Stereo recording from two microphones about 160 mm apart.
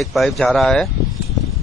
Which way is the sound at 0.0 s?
Centre (ahead or behind).